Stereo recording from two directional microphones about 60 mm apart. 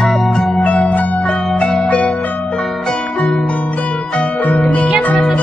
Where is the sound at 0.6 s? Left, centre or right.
Left.